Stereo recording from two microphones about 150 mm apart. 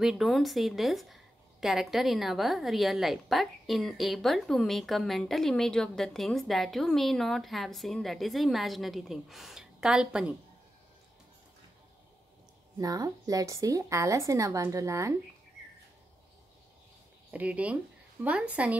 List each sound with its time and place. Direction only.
0.0 s a woman's voice: centre (ahead or behind)
12.7 s a woman's voice: 25° right (ahead or behind)
17.3 s a woman's voice: 10° right (ahead or behind)